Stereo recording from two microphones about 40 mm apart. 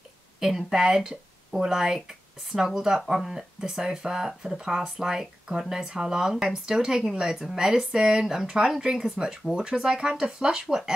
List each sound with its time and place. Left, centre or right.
0.4 s speech: centre